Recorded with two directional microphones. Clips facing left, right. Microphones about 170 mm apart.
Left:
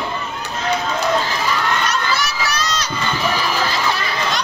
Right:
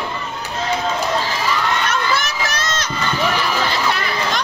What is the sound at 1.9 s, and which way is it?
Crowd, 50° right (ahead or behind).